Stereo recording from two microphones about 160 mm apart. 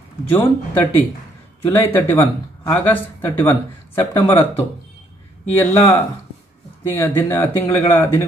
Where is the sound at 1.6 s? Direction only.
15° left (ahead or behind).